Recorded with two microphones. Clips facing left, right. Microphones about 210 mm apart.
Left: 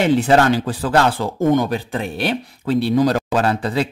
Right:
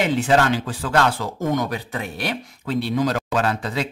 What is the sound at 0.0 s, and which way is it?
Speech, 35° left (ahead or behind).